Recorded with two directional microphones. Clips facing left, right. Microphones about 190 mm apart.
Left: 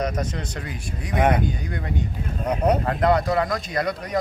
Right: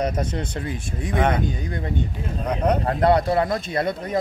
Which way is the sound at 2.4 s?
10° left (ahead or behind).